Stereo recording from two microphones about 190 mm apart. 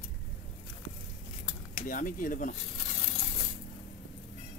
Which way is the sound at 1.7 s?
45° left (ahead or behind).